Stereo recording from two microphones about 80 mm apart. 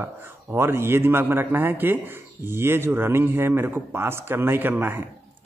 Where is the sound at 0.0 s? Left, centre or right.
Right.